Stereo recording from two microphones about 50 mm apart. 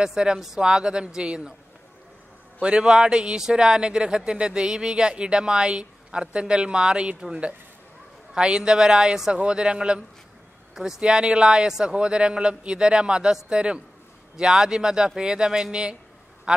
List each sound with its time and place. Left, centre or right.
0.0 s speech: centre
2.6 s speech: centre
8.4 s a man's voice: centre